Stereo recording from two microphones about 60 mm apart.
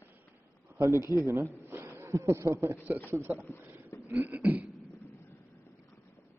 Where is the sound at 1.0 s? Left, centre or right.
Right.